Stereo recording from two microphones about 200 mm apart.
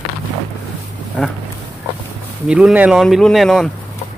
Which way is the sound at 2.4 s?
5° right (ahead or behind).